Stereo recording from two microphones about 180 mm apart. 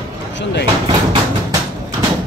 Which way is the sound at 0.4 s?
70° left (ahead or behind).